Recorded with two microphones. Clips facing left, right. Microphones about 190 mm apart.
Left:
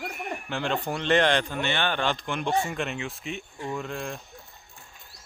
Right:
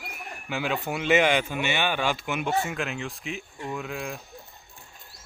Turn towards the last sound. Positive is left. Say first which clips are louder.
# even
turn(degrees=0)  # may be behind; listen again after turning